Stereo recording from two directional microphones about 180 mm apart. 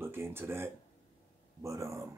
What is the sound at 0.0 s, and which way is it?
Speech, 15° right (ahead or behind).